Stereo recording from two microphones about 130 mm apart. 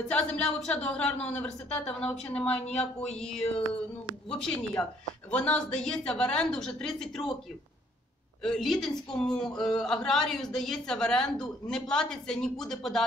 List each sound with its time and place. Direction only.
0.1 s a woman's voice: 5° left (ahead or behind)
2.6 s speech: 55° left (ahead or behind)
3.2 s a man's voice: 5° left (ahead or behind)
8.4 s a man's voice: 5° left (ahead or behind)